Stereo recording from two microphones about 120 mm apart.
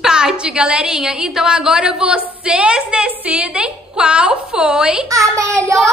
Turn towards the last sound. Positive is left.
turn(degrees=-25)  # may be behind; listen again after turning